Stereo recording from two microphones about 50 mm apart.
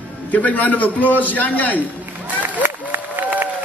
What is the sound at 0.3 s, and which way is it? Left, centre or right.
A man's voice, left.